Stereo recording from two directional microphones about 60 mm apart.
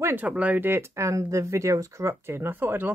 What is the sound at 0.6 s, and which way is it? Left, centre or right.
Speech, right.